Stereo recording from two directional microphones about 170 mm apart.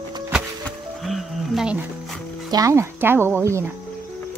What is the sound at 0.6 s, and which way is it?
Music, centre (ahead or behind).